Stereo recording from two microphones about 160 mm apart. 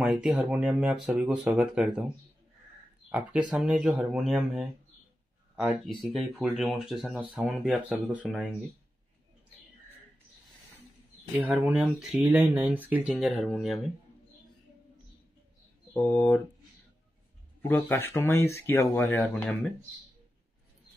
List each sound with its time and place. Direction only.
0.0 s speech: 5° right (ahead or behind)
3.1 s speech: 5° right (ahead or behind)
5.9 s speech: centre (ahead or behind)
11.4 s speech: 5° right (ahead or behind)
13.1 s speech: centre (ahead or behind)
15.9 s speech: 10° left (ahead or behind)
17.6 s speech: 15° left (ahead or behind)